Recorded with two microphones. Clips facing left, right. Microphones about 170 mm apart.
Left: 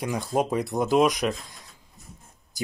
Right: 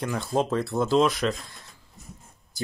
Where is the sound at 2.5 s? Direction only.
15° left (ahead or behind).